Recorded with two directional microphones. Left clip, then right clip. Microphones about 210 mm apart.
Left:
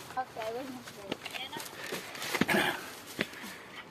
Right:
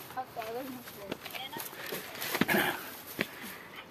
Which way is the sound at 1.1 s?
Centre (ahead or behind).